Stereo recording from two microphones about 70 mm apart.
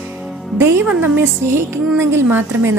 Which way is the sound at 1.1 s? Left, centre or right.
Right.